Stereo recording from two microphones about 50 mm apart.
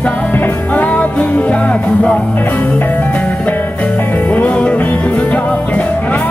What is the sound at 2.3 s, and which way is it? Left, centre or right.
Music, left.